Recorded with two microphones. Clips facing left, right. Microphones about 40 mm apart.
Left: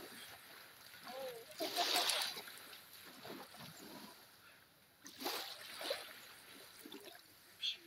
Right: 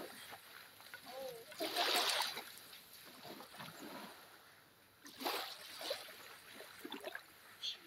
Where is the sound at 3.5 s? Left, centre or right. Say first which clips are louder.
Right 4 dB; right.